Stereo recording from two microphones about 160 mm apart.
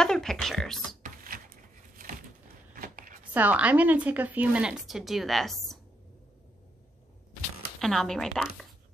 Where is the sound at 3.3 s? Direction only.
10° right (ahead or behind).